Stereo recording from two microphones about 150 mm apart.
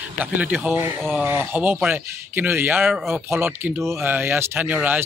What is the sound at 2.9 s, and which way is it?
Speech, centre (ahead or behind).